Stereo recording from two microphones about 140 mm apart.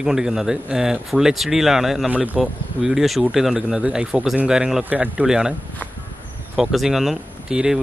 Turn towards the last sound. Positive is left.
turn(degrees=-10)  # may be behind; listen again after turning